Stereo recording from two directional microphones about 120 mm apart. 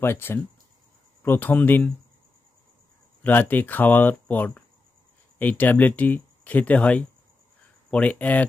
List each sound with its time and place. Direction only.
0.0 s speech: 20° left (ahead or behind)
3.3 s speech: 15° left (ahead or behind)